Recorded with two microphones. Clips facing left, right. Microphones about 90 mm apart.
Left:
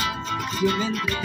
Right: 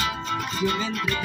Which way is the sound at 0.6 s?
5° left (ahead or behind).